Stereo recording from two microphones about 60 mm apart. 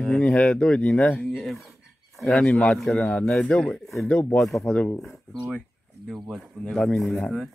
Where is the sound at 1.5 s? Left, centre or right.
Centre.